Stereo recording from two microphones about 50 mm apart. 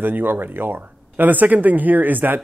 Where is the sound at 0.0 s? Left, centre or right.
Right.